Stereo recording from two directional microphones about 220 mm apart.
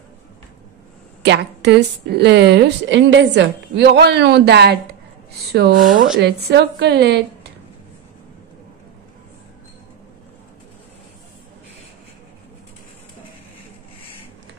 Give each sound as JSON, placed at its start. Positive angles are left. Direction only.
{"t": 1.2, "sound": "a woman's voice", "side_deg": -50}